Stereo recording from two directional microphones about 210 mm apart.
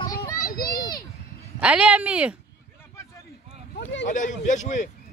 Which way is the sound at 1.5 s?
5° right (ahead or behind).